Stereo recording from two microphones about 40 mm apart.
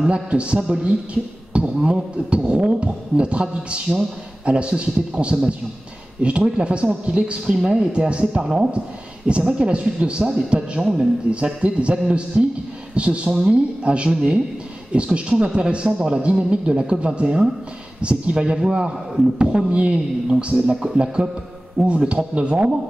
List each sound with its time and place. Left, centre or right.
0.0 s speech: right